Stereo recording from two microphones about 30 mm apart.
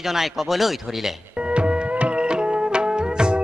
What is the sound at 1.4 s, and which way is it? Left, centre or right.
Music, right.